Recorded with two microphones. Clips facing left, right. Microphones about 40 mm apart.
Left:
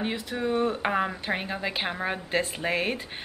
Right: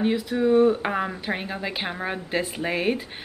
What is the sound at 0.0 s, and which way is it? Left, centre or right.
A woman's voice, centre.